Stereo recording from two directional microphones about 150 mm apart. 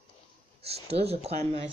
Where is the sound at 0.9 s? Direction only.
45° right (ahead or behind).